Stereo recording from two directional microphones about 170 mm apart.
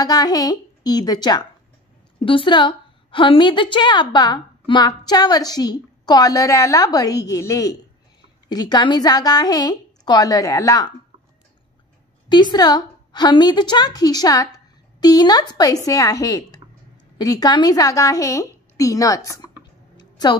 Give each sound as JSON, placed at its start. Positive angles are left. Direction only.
{"t": 0.0, "sound": "a woman's voice", "side_deg": 20}
{"t": 12.3, "sound": "a woman's voice", "side_deg": 25}
{"t": 20.0, "sound": "a sound", "side_deg": 25}